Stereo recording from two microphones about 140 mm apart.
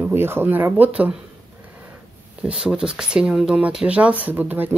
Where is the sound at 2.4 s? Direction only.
5° right (ahead or behind).